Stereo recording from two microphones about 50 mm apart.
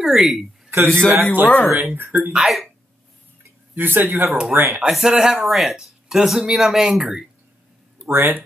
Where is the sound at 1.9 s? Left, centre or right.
Right.